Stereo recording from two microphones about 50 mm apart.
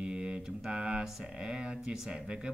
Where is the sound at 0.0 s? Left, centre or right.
Centre.